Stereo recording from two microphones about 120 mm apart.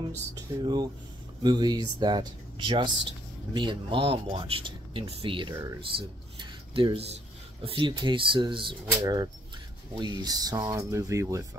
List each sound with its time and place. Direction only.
0.3 s speech: 35° right (ahead or behind)
9.0 s speech: 35° right (ahead or behind)